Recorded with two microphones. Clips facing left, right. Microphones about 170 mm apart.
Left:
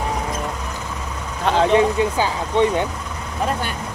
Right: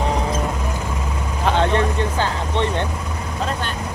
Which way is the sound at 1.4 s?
Centre (ahead or behind).